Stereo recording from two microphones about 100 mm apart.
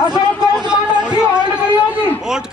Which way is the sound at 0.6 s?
50° right (ahead or behind).